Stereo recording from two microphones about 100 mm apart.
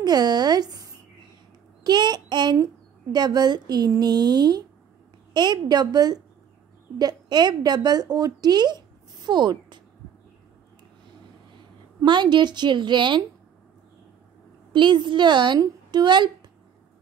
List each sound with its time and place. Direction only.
0.0 s speech: 45° right (ahead or behind)
1.9 s a woman's voice: 45° right (ahead or behind)
12.0 s speech: 50° right (ahead or behind)
14.7 s speech: 50° right (ahead or behind)